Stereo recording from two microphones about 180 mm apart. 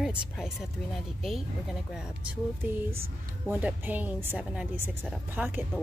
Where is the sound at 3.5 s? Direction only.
10° right (ahead or behind).